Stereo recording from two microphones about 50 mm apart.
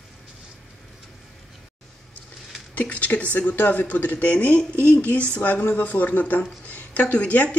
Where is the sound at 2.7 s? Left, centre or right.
Left.